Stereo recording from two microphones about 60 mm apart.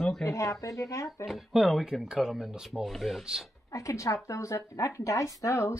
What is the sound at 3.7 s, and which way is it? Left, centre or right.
Speech, left.